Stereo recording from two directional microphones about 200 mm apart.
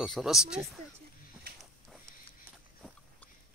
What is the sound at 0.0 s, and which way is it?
Speech, centre (ahead or behind).